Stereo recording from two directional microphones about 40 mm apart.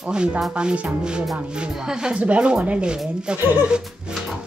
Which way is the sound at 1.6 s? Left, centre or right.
Centre.